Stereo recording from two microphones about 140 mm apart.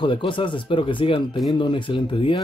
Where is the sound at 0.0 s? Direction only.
35° left (ahead or behind).